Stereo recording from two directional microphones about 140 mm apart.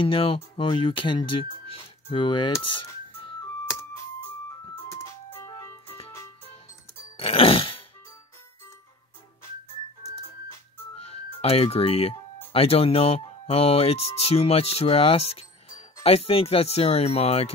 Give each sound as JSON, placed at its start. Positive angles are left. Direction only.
{"t": 0.0, "sound": "speech", "side_deg": 40}
{"t": 4.8, "sound": "ice cream truck", "side_deg": 20}
{"t": 7.2, "sound": "a sound", "side_deg": 45}
{"t": 11.0, "sound": "speech", "side_deg": 45}